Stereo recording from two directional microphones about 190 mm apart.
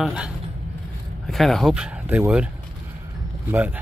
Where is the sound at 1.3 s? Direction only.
Centre (ahead or behind).